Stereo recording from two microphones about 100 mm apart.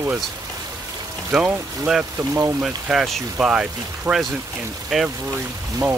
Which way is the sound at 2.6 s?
5° right (ahead or behind).